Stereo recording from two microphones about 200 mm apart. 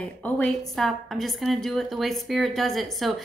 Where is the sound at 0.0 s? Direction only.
5° left (ahead or behind).